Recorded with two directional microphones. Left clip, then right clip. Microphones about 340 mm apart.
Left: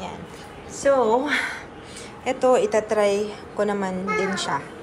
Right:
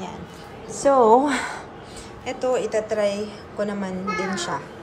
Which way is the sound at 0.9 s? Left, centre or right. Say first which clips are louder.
Right 4 dB; centre.